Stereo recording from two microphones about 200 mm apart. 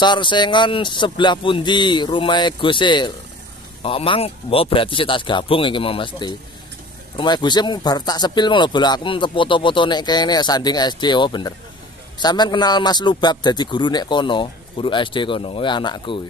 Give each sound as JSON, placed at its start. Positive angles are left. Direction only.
{"t": 0.0, "sound": "speech", "side_deg": 20}